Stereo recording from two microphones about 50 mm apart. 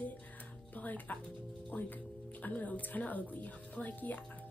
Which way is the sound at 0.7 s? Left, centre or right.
Left.